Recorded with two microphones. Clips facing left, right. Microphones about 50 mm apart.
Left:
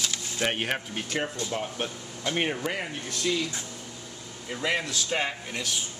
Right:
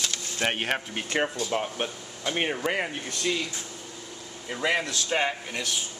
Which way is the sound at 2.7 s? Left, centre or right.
Centre.